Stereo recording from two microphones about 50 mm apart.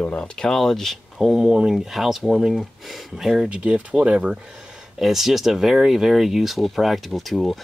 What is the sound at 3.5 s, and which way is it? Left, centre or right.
Speech, right.